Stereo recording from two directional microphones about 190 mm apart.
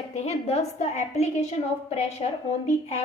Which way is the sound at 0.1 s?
35° left (ahead or behind).